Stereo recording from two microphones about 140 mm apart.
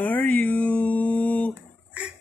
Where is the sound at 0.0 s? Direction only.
10° left (ahead or behind).